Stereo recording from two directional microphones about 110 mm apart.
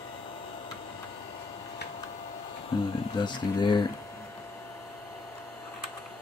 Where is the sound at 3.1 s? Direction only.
45° left (ahead or behind).